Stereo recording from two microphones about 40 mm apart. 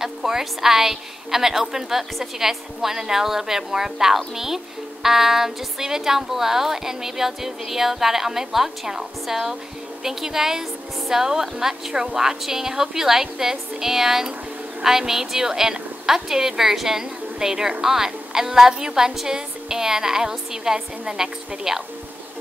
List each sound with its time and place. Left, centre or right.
0.0 s a woman's voice: centre